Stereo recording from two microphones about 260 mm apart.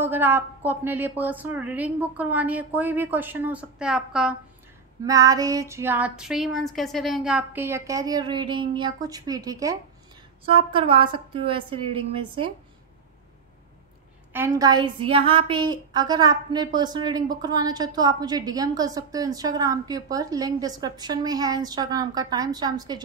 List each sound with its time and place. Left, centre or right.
0.0 s a woman's voice: centre
14.3 s a woman's voice: centre